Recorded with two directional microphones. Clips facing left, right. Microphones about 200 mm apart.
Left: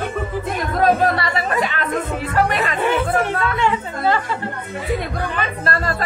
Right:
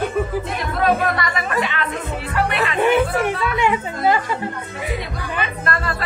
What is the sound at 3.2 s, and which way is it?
A woman's voice, 15° right (ahead or behind).